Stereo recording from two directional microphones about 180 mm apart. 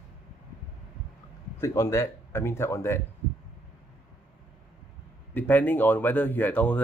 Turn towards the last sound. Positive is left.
turn(degrees=10)  # may be behind; listen again after turning